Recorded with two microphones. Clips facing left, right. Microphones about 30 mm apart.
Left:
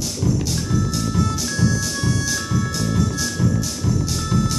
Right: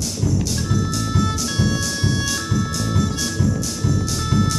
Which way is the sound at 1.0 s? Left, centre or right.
Right.